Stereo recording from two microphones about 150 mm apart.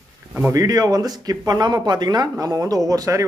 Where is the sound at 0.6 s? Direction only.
25° right (ahead or behind).